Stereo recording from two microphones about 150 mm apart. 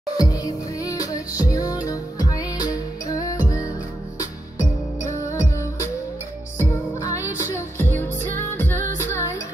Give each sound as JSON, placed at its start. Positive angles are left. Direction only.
{"t": 0.2, "sound": "music", "side_deg": 25}
{"t": 5.3, "sound": "music", "side_deg": 20}